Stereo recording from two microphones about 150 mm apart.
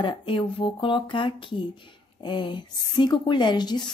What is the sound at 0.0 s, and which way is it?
Speech, 35° left (ahead or behind).